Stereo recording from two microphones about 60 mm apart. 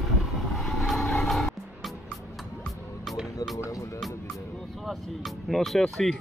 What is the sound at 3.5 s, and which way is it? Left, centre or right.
Speech, left.